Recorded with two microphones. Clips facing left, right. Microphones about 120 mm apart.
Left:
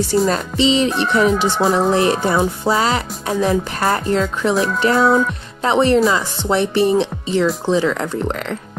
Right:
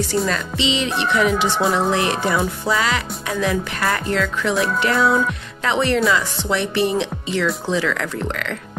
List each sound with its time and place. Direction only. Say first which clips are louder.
0.3 s music: left 6 dB; 40° left (ahead or behind)
0.8 s speech: left 3 dB; centre (ahead or behind)
1.9 s music: left 4 dB; 35° left (ahead or behind)
5.0 s speech: left 2 dB; centre (ahead or behind)
5.6 s music: left 5 dB; 35° left (ahead or behind)